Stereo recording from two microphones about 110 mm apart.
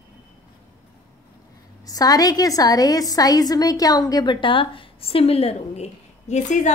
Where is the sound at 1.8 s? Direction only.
35° left (ahead or behind).